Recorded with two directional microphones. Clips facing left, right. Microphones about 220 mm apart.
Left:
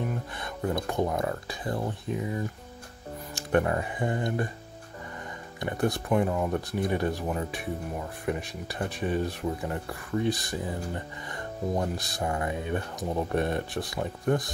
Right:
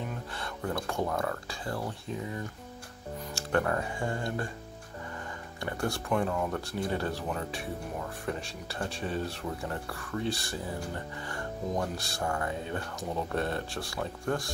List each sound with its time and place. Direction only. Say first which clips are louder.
0.3 s speech: left 4 dB; 15° left (ahead or behind)
5.6 s speech: left 5 dB; 20° left (ahead or behind)